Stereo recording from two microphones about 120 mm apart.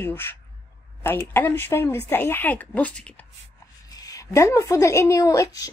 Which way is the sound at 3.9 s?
30° left (ahead or behind).